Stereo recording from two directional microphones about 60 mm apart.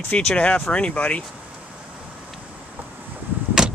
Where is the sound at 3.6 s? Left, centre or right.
Centre.